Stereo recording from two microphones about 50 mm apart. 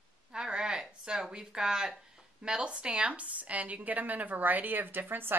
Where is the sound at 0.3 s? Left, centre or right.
Centre.